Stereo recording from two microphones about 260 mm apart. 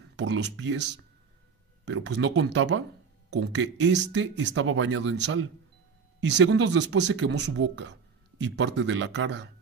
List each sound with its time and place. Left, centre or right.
0.1 s speech: right
2.5 s speech: right
3.3 s speech: right